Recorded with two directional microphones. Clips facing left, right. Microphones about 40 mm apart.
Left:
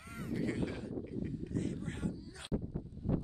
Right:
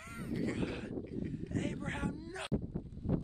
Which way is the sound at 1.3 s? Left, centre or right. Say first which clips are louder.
Right 1 dB; right.